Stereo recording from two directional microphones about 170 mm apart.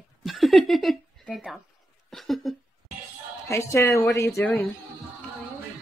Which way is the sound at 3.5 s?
15° left (ahead or behind).